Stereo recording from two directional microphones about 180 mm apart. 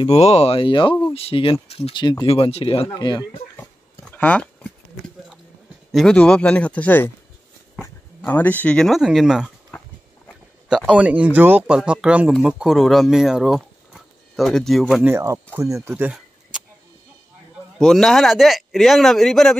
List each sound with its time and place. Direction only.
0.0 s speech: 35° left (ahead or behind)
3.5 s a sound: 10° left (ahead or behind)
5.9 s speech: centre (ahead or behind)
10.2 s a sound: 5° left (ahead or behind)
10.9 s speech: 5° right (ahead or behind)
15.9 s speech: 5° right (ahead or behind)
17.7 s speech: 5° left (ahead or behind)